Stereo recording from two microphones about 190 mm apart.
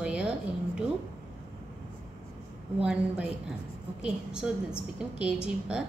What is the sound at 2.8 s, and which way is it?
A woman's voice, 5° right (ahead or behind).